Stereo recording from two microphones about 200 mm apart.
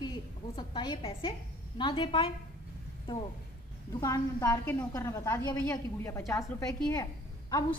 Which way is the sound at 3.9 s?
15° left (ahead or behind).